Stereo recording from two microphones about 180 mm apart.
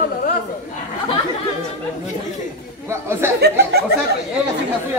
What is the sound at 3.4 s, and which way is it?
Speech, 65° right (ahead or behind).